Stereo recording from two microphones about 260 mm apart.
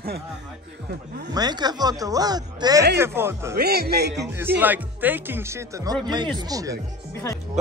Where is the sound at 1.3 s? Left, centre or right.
Centre.